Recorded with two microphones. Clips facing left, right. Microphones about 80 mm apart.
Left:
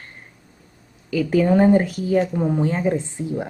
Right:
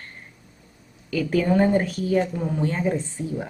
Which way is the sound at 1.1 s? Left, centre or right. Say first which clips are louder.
Left 3 dB; centre.